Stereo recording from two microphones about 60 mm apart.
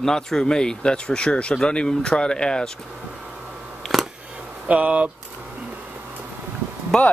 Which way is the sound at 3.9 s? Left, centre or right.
Centre.